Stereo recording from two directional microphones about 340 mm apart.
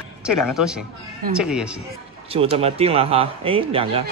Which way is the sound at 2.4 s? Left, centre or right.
Centre.